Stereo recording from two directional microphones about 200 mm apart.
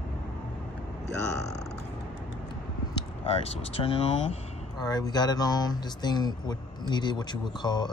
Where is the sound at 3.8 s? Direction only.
20° left (ahead or behind).